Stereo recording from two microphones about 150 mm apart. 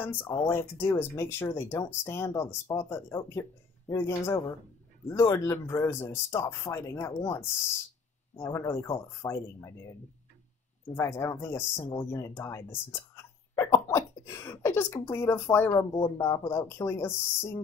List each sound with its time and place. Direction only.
0.0 s speech: 15° left (ahead or behind)
11.0 s speech: 20° left (ahead or behind)